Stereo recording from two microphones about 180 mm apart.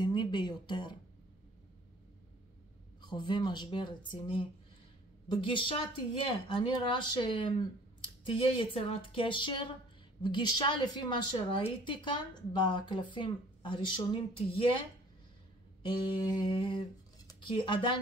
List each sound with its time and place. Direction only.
0.0 s a sound: 25° left (ahead or behind)
3.0 s a woman's voice: 25° left (ahead or behind)
16.0 s a woman's voice: 30° left (ahead or behind)